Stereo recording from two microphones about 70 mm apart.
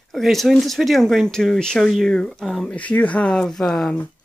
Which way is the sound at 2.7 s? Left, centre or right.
Centre.